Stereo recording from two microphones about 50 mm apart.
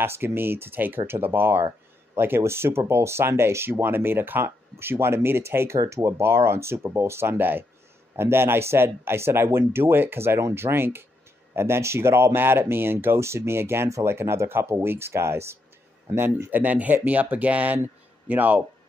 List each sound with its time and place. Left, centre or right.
0.0 s speech: right
3.7 s speech: right
5.9 s speech: right
6.2 s speech: right
7.3 s speech: right
8.2 s speech: right
11.5 s speech: right
13.2 s speech: right
13.8 s speech: right
16.4 s speech: right